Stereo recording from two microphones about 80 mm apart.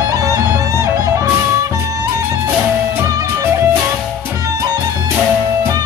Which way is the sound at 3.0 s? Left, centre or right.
Right.